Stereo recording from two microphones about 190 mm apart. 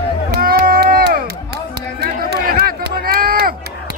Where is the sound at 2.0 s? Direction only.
55° right (ahead or behind).